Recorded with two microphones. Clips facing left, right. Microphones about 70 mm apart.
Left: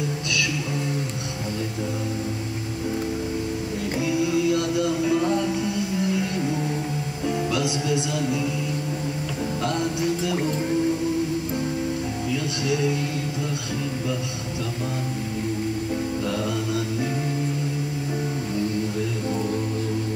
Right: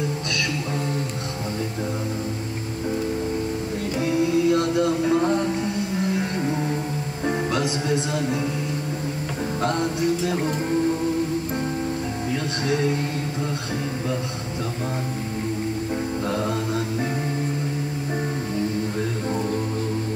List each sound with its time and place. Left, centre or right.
4.0 s music: right
9.6 s music: right
12.3 s music: right